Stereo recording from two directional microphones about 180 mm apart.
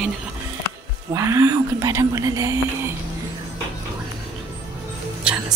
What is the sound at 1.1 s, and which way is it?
A woman's voice, 15° right (ahead or behind).